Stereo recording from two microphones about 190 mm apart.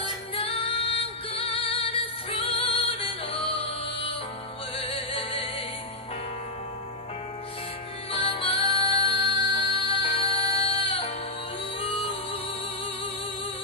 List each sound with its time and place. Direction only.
0.3 s music: 30° left (ahead or behind)
8.1 s music: 30° left (ahead or behind)